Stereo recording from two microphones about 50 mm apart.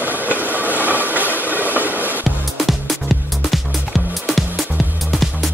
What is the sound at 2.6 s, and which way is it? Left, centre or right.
Music, centre.